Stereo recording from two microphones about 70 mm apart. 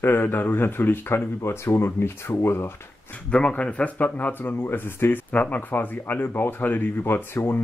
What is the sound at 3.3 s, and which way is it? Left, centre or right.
Speech, centre.